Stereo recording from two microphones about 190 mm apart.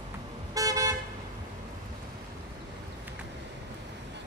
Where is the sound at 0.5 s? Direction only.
20° right (ahead or behind).